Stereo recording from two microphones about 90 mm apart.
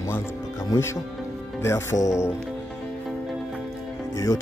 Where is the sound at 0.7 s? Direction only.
35° left (ahead or behind).